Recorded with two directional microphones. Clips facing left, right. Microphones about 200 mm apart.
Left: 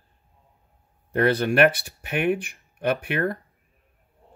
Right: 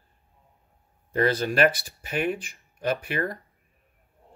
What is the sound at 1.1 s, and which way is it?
Speech, 65° left (ahead or behind).